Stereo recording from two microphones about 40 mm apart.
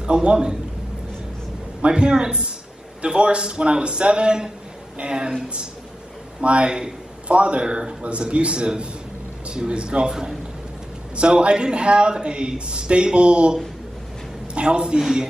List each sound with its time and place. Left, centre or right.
0.0 s a man's voice: right
1.8 s a man's voice: right
6.4 s a man's voice: right
15.0 s a man's voice: centre